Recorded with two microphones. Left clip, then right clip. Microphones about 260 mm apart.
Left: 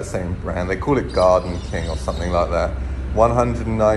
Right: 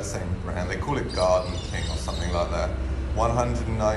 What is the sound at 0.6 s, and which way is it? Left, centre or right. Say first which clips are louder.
Speech: left 9 dB; centre.